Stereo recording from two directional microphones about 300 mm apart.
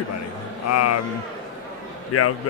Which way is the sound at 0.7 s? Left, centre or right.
Left.